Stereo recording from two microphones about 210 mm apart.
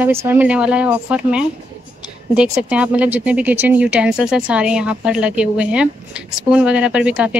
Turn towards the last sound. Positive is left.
turn(degrees=-5)  # may be behind; listen again after turning